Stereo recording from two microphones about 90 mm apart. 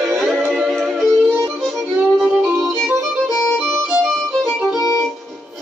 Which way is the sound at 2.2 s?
10° right (ahead or behind).